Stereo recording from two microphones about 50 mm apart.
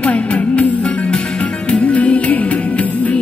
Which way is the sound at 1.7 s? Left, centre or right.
Left.